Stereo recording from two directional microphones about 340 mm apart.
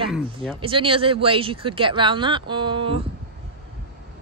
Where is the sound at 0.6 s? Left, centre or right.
Centre.